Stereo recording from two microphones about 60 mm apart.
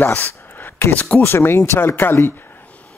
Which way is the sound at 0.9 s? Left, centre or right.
Left.